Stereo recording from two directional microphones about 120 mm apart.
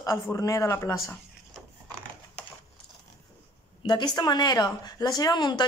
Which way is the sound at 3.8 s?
35° left (ahead or behind).